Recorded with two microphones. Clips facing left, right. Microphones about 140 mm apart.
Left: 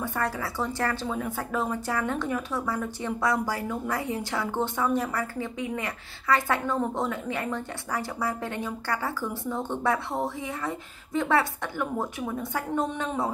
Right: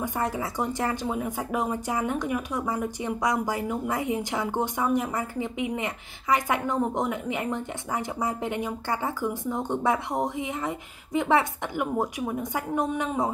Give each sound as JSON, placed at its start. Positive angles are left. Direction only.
{"t": 0.0, "sound": "speech", "side_deg": -20}